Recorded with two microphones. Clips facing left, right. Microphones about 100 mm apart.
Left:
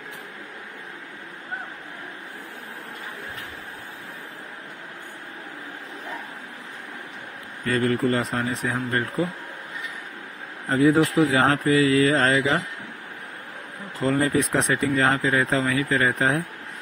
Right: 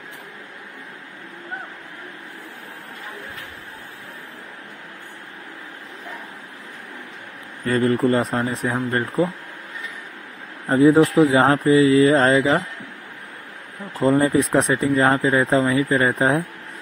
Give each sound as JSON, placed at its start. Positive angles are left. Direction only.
{"t": 7.6, "sound": "speech", "side_deg": -30}
{"t": 10.7, "sound": "speech", "side_deg": -25}
{"t": 14.0, "sound": "speech", "side_deg": -25}